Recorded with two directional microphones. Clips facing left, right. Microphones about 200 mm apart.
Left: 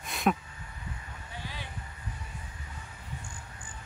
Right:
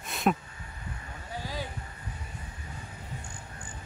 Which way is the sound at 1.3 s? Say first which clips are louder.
Right 7 dB; 40° right (ahead or behind).